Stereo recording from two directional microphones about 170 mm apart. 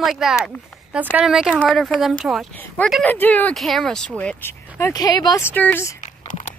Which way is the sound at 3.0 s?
10° left (ahead or behind).